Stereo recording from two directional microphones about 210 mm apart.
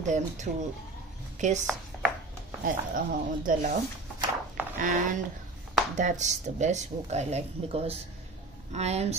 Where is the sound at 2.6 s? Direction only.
40° right (ahead or behind).